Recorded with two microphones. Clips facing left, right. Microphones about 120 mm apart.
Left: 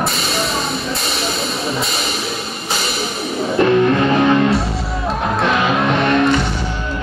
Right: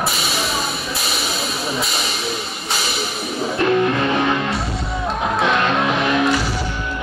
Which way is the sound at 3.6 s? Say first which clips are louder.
Left 4 dB; centre (ahead or behind).